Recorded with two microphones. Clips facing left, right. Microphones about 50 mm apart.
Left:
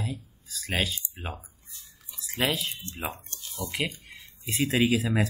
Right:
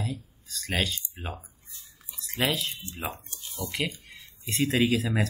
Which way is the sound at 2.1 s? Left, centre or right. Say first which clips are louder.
Even; centre.